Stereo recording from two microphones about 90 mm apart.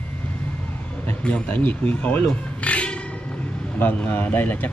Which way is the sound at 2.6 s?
10° left (ahead or behind).